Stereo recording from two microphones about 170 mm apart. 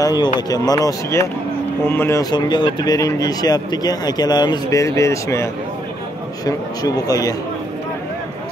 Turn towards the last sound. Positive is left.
turn(degrees=20)  # may be behind; listen again after turning